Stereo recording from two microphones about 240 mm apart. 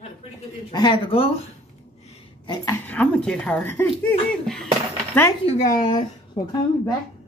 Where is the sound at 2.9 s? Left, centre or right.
Centre.